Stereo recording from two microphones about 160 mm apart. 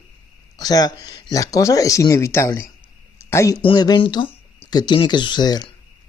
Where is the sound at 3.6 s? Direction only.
30° left (ahead or behind).